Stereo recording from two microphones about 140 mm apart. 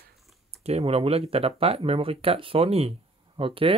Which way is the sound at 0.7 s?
45° right (ahead or behind).